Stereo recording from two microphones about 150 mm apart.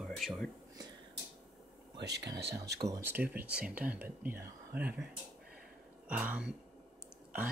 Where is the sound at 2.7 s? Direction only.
20° right (ahead or behind).